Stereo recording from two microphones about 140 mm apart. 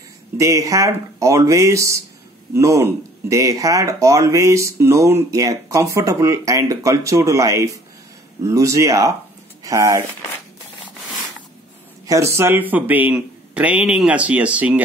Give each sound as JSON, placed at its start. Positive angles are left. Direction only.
{"t": 0.4, "sound": "speech", "side_deg": -25}
{"t": 12.1, "sound": "a man's voice", "side_deg": -20}